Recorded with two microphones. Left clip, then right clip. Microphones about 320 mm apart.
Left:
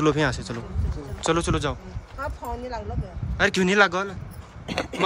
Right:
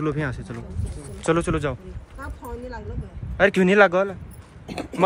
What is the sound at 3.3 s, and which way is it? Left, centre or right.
Speech, centre.